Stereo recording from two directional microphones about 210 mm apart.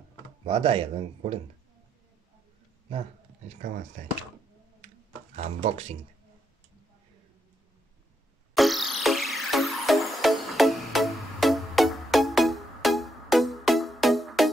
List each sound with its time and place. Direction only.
0.5 s speech: 25° right (ahead or behind)
3.4 s speech: 40° right (ahead or behind)
4.8 s computer keyboard: 30° right (ahead or behind)
8.5 s music: centre (ahead or behind)